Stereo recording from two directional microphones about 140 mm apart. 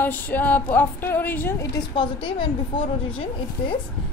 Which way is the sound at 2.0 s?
35° left (ahead or behind).